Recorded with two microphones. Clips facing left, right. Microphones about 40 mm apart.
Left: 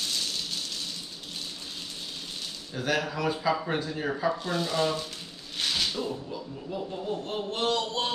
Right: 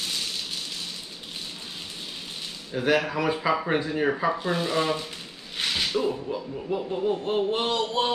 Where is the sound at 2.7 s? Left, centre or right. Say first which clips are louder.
Right 5 dB; right.